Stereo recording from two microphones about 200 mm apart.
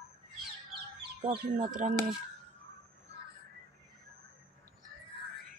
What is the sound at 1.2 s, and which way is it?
Speech, 35° right (ahead or behind).